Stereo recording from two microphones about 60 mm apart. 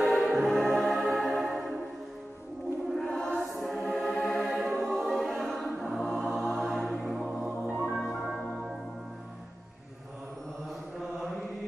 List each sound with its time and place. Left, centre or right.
0.0 s music: centre
3.0 s choir: centre
3.3 s music: centre
4.5 s choir: centre
5.9 s music: centre
7.4 s music: centre
8.3 s music: centre
11.0 s chant: centre